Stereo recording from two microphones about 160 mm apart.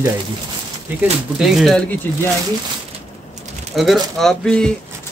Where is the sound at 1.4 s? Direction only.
Centre (ahead or behind).